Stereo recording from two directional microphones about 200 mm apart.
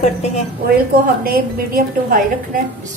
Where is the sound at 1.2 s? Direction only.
50° right (ahead or behind).